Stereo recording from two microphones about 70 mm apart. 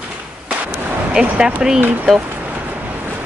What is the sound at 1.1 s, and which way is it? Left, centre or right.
Speech, centre.